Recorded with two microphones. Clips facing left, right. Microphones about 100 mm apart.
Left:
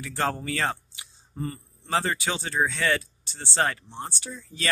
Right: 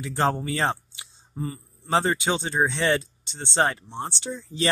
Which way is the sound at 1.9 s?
25° right (ahead or behind).